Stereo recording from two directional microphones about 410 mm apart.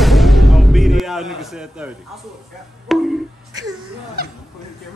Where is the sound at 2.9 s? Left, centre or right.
Centre.